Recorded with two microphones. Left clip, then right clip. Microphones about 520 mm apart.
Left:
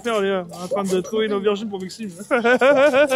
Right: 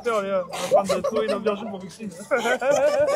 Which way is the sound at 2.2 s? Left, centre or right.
Left.